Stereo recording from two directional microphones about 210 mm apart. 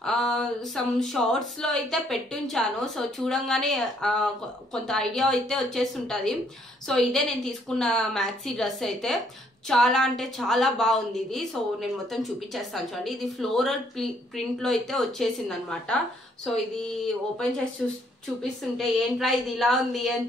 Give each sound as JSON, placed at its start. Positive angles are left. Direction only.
{"t": 0.0, "sound": "a woman's voice", "side_deg": 0}
{"t": 17.0, "sound": "a woman's voice", "side_deg": 5}